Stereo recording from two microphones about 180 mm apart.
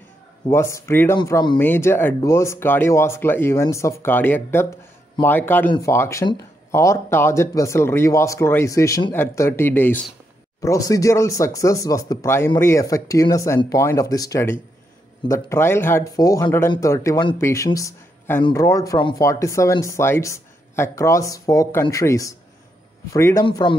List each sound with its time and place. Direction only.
0.5 s speech: 15° left (ahead or behind)
23.4 s speech: 25° left (ahead or behind)